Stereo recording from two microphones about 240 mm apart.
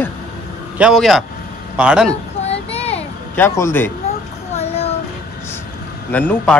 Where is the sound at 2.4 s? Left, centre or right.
Left.